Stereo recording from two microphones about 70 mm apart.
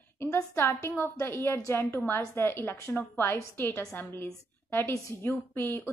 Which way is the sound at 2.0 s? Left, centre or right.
Left.